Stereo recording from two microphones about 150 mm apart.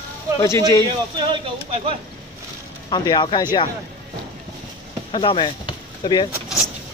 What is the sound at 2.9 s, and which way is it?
Speech, 30° left (ahead or behind).